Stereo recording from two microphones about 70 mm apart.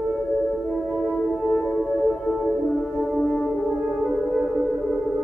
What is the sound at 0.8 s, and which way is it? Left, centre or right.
Music, centre.